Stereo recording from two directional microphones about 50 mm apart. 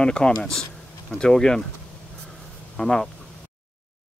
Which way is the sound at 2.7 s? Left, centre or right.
Centre.